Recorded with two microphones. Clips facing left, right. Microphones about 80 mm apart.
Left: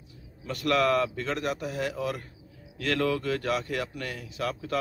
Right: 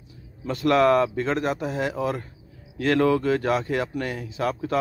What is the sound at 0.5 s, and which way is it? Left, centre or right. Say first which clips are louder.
Speech: right 6 dB; right.